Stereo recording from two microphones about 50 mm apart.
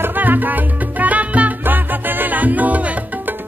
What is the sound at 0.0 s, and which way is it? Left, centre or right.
Salsa music, right.